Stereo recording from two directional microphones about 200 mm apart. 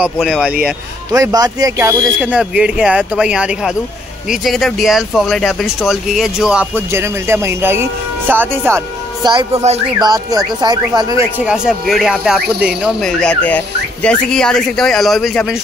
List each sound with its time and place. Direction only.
0.0 s speech: 5° right (ahead or behind)
1.1 s speech: 15° right (ahead or behind)
2.1 s speech: 5° right (ahead or behind); by 9.8 s 30° right (ahead or behind)
9.9 s speech: 20° right (ahead or behind); by 15.5 s centre (ahead or behind)